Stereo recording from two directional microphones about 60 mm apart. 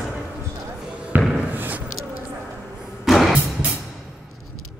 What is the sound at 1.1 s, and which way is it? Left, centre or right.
Slam, right.